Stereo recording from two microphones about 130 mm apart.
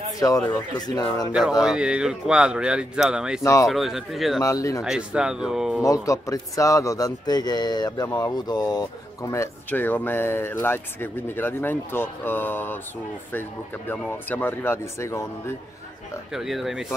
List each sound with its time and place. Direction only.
0.5 s speech: 30° left (ahead or behind)
1.3 s a man's voice: 5° right (ahead or behind)
4.4 s speech: 25° left (ahead or behind)
4.8 s a man's voice: 5° right (ahead or behind)
6.0 s speech: 25° left (ahead or behind)
16.3 s a man's voice: centre (ahead or behind)